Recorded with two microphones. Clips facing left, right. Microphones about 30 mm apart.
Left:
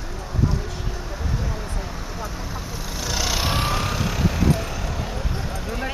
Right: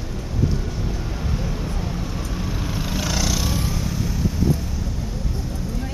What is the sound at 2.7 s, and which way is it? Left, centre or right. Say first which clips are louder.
Vehicle: right 5 dB; right.